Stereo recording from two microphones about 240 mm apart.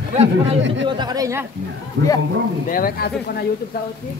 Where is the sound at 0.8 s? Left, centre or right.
Centre.